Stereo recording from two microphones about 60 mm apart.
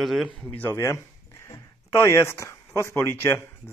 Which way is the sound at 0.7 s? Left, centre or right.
Left.